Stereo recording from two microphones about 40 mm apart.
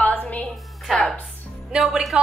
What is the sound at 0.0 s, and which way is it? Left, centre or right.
Music, left.